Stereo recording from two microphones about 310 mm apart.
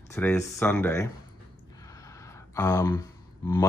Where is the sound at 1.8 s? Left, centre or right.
Centre.